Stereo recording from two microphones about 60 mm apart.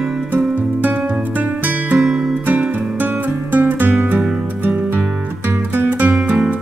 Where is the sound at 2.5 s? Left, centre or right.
Right.